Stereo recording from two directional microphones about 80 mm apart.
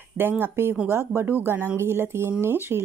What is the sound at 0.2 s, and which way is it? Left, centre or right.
Speech, right.